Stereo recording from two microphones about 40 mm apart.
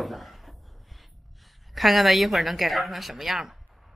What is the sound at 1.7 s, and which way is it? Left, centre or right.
A woman's voice, centre.